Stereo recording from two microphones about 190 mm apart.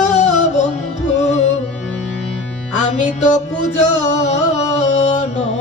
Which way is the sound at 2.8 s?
35° left (ahead or behind).